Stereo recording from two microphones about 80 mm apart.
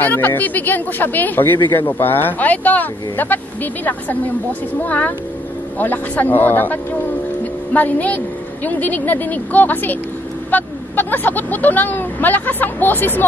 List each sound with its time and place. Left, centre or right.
0.0 s speech: left